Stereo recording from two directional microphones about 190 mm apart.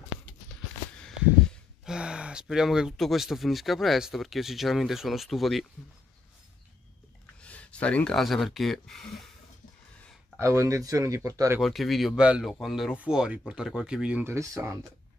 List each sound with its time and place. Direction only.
1.0 s speech: centre (ahead or behind)
7.4 s speech: 5° left (ahead or behind)
10.3 s speech: 15° right (ahead or behind)
11.6 s speech: centre (ahead or behind); by 14.9 s 15° right (ahead or behind)